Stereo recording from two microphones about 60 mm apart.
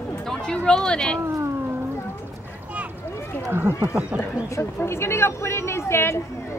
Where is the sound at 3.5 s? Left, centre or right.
Right.